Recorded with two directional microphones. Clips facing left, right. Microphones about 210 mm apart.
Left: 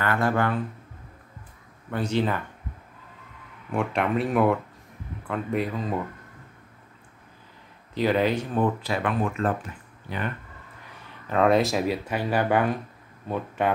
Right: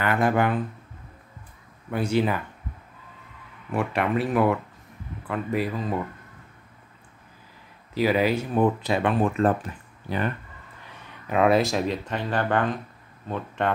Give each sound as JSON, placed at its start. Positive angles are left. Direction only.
{"t": 0.0, "sound": "speech", "side_deg": -15}
{"t": 1.9, "sound": "speech", "side_deg": -10}
{"t": 3.7, "sound": "speech", "side_deg": -5}
{"t": 7.9, "sound": "speech", "side_deg": -5}
{"t": 11.2, "sound": "speech", "side_deg": -5}